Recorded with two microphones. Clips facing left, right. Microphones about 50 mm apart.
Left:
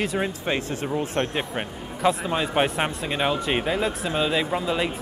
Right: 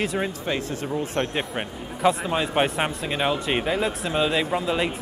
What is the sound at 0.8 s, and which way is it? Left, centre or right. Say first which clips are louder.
Speech: left 1 dB; centre.